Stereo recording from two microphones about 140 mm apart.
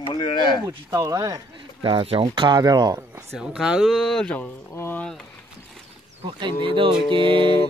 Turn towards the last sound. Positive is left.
turn(degrees=-35)  # may be behind; listen again after turning